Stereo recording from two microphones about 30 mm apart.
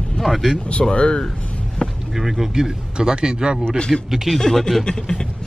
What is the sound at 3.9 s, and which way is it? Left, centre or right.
Speech, centre.